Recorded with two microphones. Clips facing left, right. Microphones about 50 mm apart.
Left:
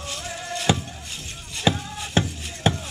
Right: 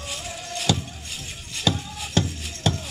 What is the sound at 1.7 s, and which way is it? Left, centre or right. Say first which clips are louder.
Music: left 2 dB; left.